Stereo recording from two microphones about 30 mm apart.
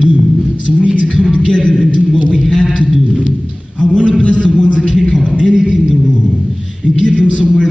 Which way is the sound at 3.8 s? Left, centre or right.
Left.